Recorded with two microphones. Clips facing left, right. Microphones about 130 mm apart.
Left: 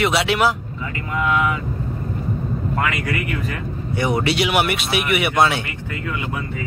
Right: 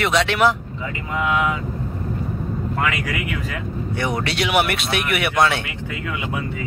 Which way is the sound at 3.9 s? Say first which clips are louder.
Left 4 dB; 5° left (ahead or behind).